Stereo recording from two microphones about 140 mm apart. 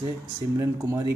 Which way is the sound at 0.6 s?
20° right (ahead or behind).